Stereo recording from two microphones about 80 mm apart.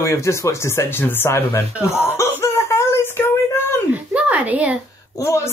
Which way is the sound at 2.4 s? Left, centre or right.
Left.